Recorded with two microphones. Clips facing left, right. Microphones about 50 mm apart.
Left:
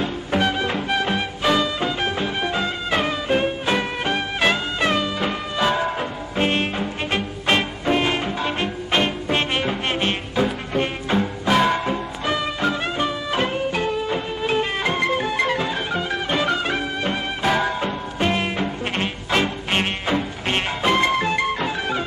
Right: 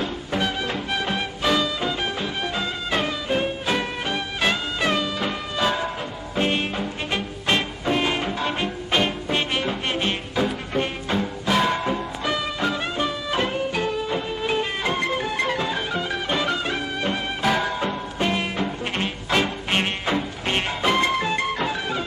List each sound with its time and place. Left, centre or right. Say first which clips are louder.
0.0 s music: left 4 dB; left